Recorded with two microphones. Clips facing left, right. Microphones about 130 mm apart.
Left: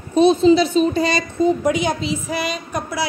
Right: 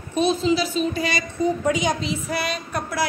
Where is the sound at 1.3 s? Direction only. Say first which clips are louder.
Left 4 dB; 20° left (ahead or behind).